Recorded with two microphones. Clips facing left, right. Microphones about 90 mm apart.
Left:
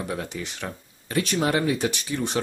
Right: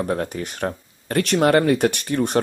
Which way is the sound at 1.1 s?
60° right (ahead or behind).